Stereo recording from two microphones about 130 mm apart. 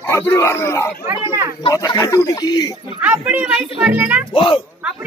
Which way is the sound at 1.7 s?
25° left (ahead or behind).